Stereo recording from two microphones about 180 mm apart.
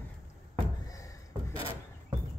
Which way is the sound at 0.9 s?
20° left (ahead or behind).